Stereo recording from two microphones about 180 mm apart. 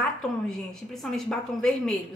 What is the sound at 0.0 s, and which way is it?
A woman's voice, centre (ahead or behind).